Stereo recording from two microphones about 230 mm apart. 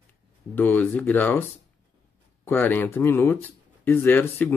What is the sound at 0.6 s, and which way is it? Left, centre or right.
Speech, centre.